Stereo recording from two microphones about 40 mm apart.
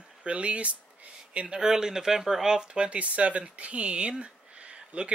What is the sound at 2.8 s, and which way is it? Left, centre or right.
Speech, right.